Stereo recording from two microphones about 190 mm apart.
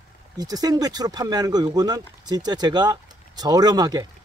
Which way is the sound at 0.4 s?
20° right (ahead or behind).